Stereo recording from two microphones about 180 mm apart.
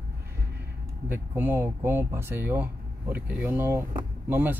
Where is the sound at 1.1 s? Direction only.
10° right (ahead or behind).